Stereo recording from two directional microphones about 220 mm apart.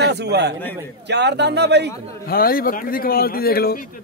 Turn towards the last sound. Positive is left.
turn(degrees=45)  # may be behind; listen again after turning